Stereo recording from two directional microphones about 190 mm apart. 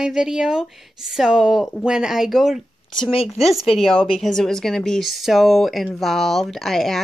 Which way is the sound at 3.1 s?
30° left (ahead or behind).